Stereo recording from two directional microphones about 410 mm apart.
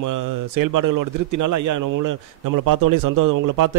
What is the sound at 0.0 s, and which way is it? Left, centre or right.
A man's voice, right.